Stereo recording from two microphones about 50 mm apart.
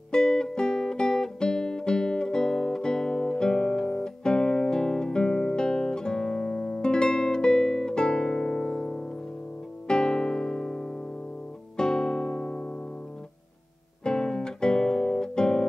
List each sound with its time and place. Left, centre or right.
0.1 s music: centre
14.0 s guitar: centre